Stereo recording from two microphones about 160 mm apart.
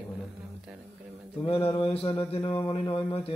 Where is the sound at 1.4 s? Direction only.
35° left (ahead or behind).